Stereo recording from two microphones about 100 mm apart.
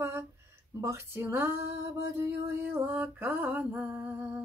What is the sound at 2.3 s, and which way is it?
Female singing, 20° right (ahead or behind).